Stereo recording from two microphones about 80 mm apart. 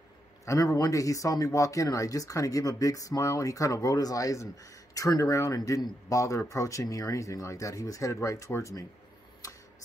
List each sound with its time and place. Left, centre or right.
0.5 s speech: left